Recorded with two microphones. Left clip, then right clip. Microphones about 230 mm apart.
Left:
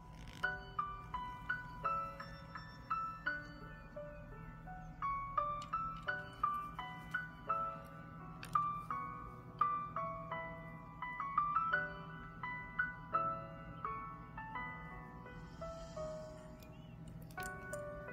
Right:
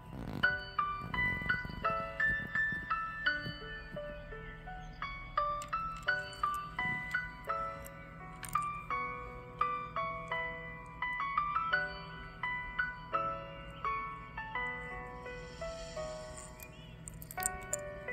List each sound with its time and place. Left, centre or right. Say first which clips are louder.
0.4 s music: right 8 dB; right
5.0 s music: right 2 dB; right
17.4 s music: right 5 dB; right